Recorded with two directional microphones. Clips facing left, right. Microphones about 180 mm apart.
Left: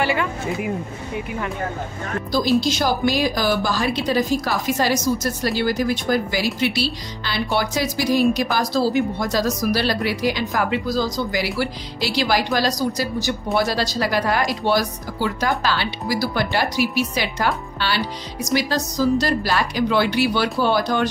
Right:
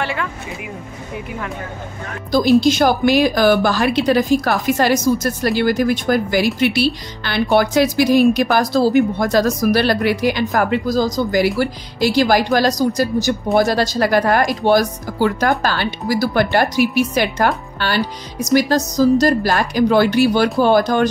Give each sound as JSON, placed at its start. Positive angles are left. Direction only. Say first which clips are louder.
{"t": 0.0, "sound": "speech", "louder": "left 2 dB", "side_deg": 5}
{"t": 2.3, "sound": "a woman's voice", "louder": "right 6 dB", "side_deg": -55}